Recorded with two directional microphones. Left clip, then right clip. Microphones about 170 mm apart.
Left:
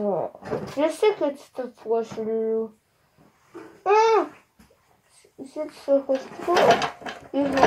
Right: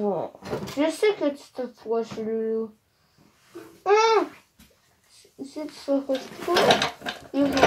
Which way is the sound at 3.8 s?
15° left (ahead or behind).